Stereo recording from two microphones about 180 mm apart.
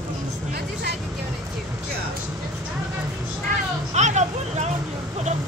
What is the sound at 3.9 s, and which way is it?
Vehicle, 40° right (ahead or behind).